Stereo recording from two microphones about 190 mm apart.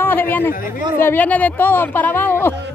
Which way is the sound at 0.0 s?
10° left (ahead or behind).